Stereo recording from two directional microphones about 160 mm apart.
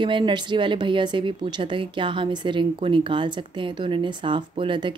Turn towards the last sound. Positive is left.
turn(degrees=-30)  # may be behind; listen again after turning